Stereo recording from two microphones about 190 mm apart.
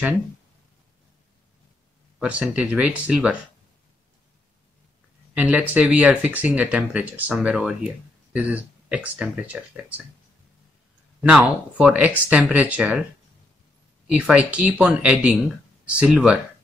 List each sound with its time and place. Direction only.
2.1 s speech: 5° right (ahead or behind)
5.3 s speech: 10° right (ahead or behind)
11.1 s speech: 5° right (ahead or behind)
14.0 s speech: 5° right (ahead or behind)